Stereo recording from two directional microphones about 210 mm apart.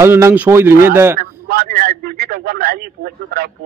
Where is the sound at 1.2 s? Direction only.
45° right (ahead or behind).